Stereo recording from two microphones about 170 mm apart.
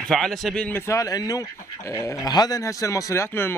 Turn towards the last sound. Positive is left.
turn(degrees=15)  # may be behind; listen again after turning